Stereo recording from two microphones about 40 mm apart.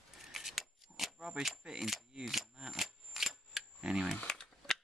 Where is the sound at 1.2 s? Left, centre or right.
Centre.